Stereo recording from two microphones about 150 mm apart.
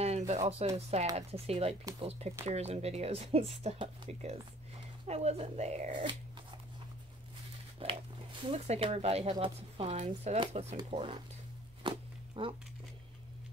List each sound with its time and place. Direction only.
0.5 s speech: 45° right (ahead or behind)
7.8 s speech: 40° right (ahead or behind)
11.8 s a sound: 35° right (ahead or behind)
12.4 s speech: 35° right (ahead or behind)